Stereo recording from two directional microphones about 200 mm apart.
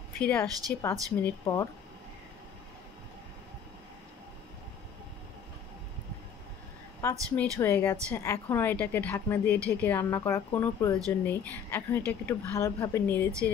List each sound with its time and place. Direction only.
0.2 s a woman's voice: 5° left (ahead or behind)
7.0 s a woman's voice: 15° left (ahead or behind)